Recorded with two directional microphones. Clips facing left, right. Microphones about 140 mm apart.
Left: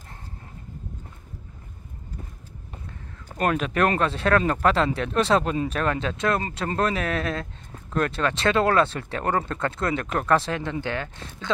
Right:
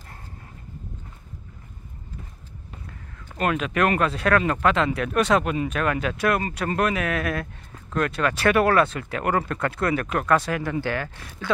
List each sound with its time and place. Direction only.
3.3 s speech: 40° left (ahead or behind); by 11.5 s 20° left (ahead or behind)